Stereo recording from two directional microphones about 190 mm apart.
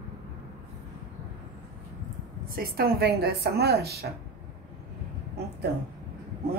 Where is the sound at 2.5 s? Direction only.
55° right (ahead or behind).